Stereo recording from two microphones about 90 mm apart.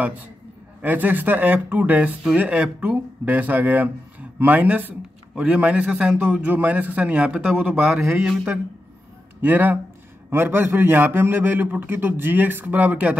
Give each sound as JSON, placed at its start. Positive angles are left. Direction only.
{"t": 0.8, "sound": "a man's voice", "side_deg": -20}
{"t": 9.4, "sound": "a man's voice", "side_deg": -20}